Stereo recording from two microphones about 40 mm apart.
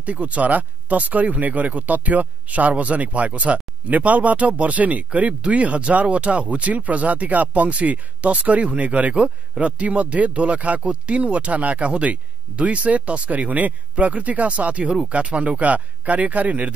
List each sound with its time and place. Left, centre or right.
0.0 s speech: right